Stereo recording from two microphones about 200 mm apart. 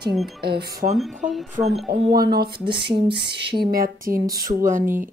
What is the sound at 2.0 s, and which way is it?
A woman's voice, 50° right (ahead or behind).